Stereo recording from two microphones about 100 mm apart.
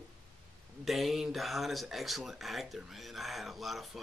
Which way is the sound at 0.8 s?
Centre (ahead or behind).